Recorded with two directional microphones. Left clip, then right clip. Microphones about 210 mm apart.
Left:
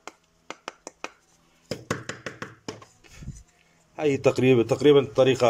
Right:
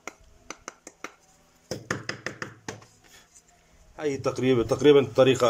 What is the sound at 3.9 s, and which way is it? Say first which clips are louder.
A man's voice: left 6 dB; 10° left (ahead or behind).